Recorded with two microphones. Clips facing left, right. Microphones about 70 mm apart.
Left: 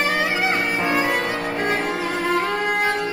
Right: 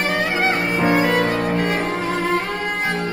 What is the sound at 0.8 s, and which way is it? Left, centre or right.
Music, right.